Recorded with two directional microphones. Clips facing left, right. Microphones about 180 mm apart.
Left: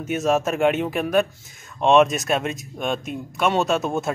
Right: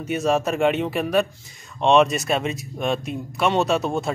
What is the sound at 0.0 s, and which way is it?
Speech, centre (ahead or behind).